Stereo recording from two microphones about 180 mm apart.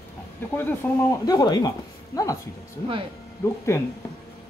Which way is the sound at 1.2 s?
20° left (ahead or behind).